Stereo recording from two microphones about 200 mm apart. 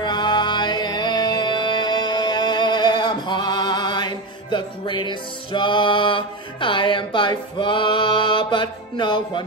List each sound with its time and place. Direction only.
0.0 s music: 20° left (ahead or behind)